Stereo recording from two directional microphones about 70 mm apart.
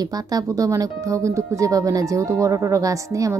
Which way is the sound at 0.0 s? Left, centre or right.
Right.